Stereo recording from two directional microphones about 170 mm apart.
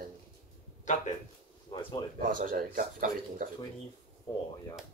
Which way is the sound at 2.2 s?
55° right (ahead or behind).